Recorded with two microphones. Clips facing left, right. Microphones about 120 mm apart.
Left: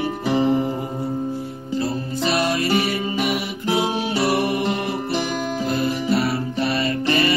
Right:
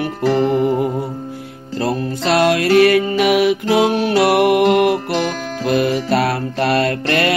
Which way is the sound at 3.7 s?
75° right (ahead or behind).